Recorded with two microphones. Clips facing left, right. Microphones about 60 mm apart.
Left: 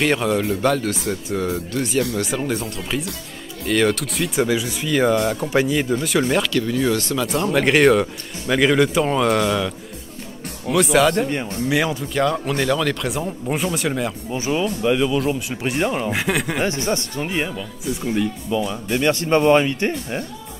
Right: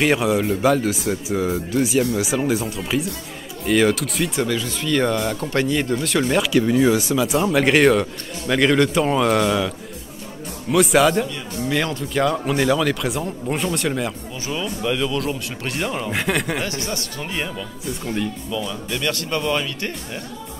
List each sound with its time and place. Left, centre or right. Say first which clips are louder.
0.0 s speech: right 1 dB; centre
4.5 s speech: left 1 dB; centre
6.4 s speech: right 4 dB; centre
10.7 s speech: even; centre
14.3 s speech: left 5 dB; left
16.1 s speech: even; centre
16.6 s speech: left 5 dB; left
17.3 s speech: left 2 dB; centre
17.8 s speech: left 3 dB; centre
18.5 s speech: left 4 dB; left